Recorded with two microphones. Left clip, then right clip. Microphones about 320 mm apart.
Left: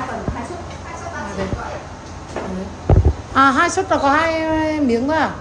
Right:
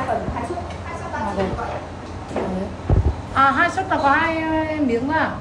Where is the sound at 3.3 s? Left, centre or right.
Centre.